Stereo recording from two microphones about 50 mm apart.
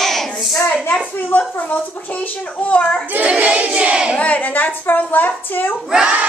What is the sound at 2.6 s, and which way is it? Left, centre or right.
Speech, left.